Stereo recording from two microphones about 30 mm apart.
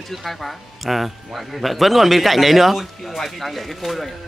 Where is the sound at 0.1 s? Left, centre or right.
Centre.